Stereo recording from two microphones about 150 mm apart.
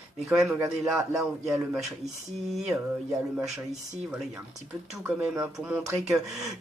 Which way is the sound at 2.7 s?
20° right (ahead or behind).